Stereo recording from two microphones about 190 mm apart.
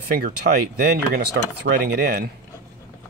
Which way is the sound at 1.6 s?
55° right (ahead or behind).